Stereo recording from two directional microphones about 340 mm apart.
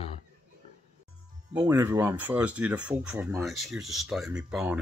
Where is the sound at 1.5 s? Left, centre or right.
Centre.